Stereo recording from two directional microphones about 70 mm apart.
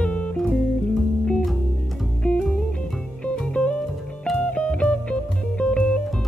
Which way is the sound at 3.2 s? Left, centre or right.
Centre.